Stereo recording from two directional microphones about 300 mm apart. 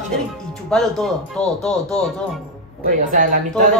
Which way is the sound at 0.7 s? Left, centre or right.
Centre.